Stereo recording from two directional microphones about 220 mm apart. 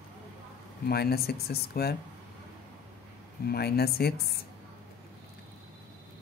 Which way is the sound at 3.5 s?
45° left (ahead or behind).